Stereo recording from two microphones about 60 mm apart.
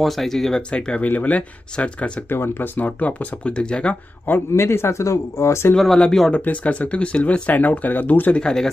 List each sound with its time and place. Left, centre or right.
0.0 s speech: centre
1.0 s speech: left
2.2 s speech: left; by 3.9 s centre
4.5 s speech: left
5.9 s speech: centre
6.3 s speech: left
8.4 s speech: centre